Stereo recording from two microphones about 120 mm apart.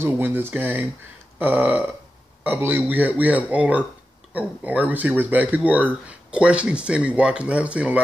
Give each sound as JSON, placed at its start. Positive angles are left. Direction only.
{"t": 0.0, "sound": "speech", "side_deg": -15}